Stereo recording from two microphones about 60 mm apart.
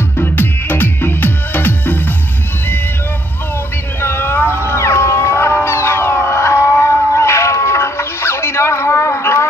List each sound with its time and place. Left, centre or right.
0.2 s music: left
4.0 s cat: left